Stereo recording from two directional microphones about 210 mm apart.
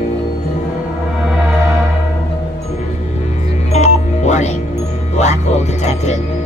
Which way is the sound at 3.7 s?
35° left (ahead or behind).